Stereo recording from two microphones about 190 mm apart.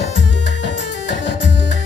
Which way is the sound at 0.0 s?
70° left (ahead or behind).